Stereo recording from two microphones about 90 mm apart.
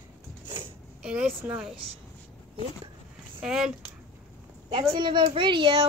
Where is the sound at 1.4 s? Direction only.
20° right (ahead or behind).